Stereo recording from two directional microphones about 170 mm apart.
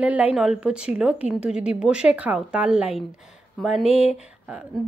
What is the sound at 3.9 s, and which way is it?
Speech, 35° left (ahead or behind).